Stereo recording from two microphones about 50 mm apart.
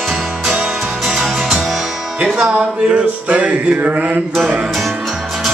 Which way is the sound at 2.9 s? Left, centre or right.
Right.